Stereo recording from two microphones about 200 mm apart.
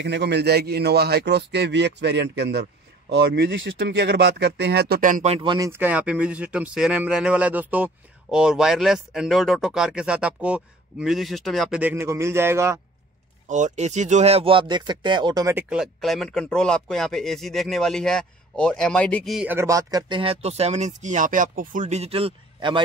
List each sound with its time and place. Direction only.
0.0 s a man's voice: 60° right (ahead or behind); by 5.7 s 25° right (ahead or behind)
5.7 s speech: 10° right (ahead or behind)
13.5 s speech: 35° right (ahead or behind); by 15.6 s 15° right (ahead or behind)
15.7 s speech: centre (ahead or behind); by 22.8 s 25° right (ahead or behind)